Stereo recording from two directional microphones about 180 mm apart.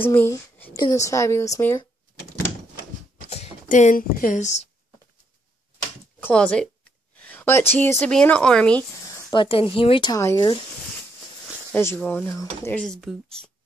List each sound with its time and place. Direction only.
0.0 s a woman's voice: 10° left (ahead or behind)
3.3 s speech: 35° left (ahead or behind)
6.1 s a woman's voice: 5° left (ahead or behind)
9.3 s speech: 30° left (ahead or behind)
11.7 s a woman's voice: 10° left (ahead or behind)